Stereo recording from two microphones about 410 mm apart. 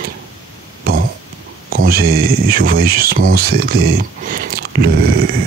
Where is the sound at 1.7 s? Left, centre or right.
Right.